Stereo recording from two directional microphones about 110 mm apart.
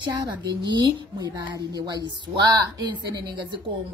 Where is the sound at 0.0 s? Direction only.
45° right (ahead or behind).